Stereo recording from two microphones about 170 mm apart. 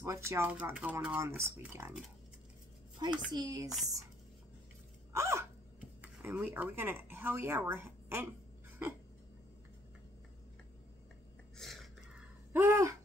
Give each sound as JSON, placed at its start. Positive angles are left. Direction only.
{"t": 0.0, "sound": "speech", "side_deg": -15}
{"t": 3.0, "sound": "a child's voice", "side_deg": -25}
{"t": 3.6, "sound": "speech", "side_deg": 0}
{"t": 5.1, "sound": "hiccup", "side_deg": -15}
{"t": 5.9, "sound": "speech", "side_deg": -10}
{"t": 11.5, "sound": "a sound", "side_deg": 0}
{"t": 12.5, "sound": "babbling", "side_deg": -15}